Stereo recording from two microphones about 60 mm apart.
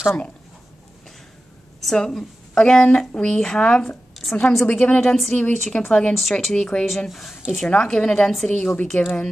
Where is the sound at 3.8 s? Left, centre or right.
Centre.